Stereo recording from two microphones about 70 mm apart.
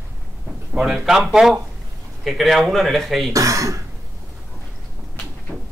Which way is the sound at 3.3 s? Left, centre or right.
Right.